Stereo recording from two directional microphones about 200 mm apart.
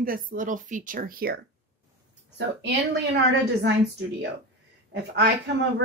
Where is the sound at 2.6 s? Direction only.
60° right (ahead or behind).